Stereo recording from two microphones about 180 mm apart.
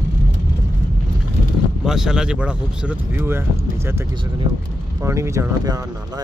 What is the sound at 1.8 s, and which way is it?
Speech, 5° right (ahead or behind).